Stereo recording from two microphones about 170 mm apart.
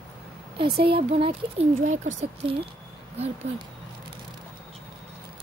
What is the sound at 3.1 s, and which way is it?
Speech, 40° right (ahead or behind).